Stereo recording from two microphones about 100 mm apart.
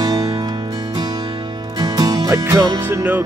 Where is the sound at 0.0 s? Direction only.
40° right (ahead or behind).